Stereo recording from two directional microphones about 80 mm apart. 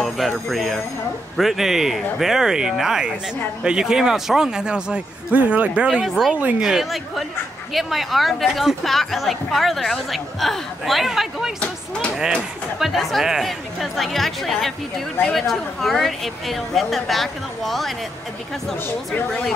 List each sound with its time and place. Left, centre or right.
0.5 s a woman's voice: centre
6.0 s a woman's voice: centre
11.6 s speech: centre
12.7 s a woman's voice: centre